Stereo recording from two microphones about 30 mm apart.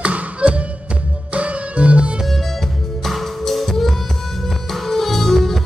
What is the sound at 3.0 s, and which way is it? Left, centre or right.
Music, centre.